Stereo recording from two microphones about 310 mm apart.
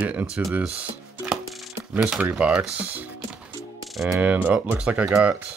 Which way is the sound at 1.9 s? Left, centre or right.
Centre.